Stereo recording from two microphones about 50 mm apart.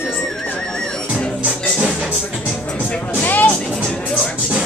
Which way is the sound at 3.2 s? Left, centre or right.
Left.